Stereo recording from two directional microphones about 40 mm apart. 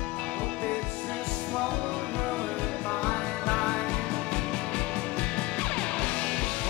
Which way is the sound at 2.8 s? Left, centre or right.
Left.